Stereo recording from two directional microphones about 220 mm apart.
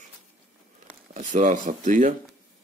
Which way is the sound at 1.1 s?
35° right (ahead or behind).